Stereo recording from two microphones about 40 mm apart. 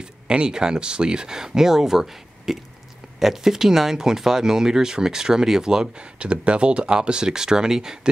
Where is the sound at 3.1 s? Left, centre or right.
Centre.